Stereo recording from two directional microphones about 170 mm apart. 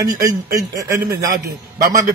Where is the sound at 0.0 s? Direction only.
20° right (ahead or behind).